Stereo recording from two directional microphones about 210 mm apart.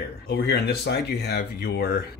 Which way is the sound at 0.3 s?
50° left (ahead or behind).